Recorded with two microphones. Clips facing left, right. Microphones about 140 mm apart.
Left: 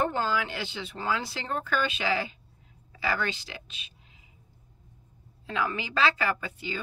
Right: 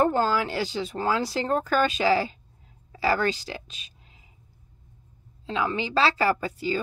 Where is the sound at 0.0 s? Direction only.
40° right (ahead or behind).